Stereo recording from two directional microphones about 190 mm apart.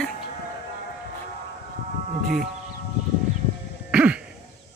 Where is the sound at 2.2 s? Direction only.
45° right (ahead or behind).